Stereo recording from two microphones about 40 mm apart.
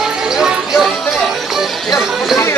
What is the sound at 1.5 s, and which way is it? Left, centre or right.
Music, centre.